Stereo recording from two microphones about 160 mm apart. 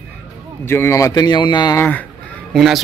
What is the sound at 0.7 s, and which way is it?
A man's voice, 15° left (ahead or behind).